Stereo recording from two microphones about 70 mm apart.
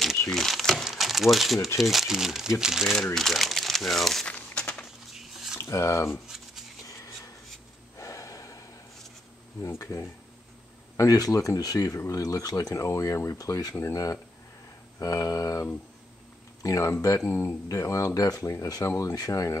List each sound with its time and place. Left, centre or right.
0.3 s crumpling: centre
1.8 s speech: centre
4.3 s crumpling: centre
5.1 s a sound: centre
5.6 s speech: left
6.2 s shuffling cards: centre
8.0 s gasp: left
9.8 s speech: left
13.4 s speech: left
13.7 s speech: left
15.0 s speech: left
16.6 s speech: left
17.3 s speech: left
17.6 s speech: left